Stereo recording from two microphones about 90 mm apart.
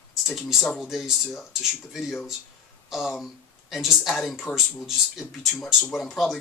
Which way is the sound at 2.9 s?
Centre (ahead or behind).